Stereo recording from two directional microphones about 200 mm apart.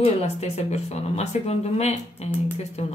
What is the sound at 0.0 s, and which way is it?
Speech, 30° left (ahead or behind).